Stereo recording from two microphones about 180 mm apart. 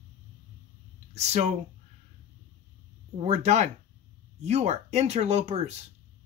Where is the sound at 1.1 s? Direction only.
40° right (ahead or behind).